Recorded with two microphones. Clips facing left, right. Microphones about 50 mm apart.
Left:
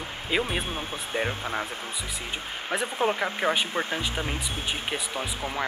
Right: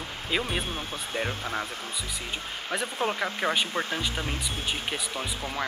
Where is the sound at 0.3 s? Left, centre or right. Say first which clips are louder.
Left 2 dB; centre.